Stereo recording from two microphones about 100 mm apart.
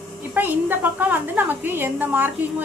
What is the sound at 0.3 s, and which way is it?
A woman's voice, 20° right (ahead or behind).